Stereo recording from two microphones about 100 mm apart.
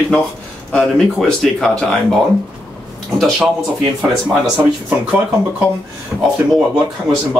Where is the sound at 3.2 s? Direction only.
Centre (ahead or behind).